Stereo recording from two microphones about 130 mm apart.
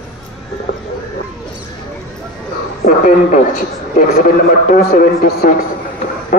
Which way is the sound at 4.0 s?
90° left.